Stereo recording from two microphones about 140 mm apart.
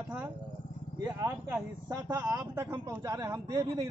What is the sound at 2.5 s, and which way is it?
A man's voice, 15° right (ahead or behind).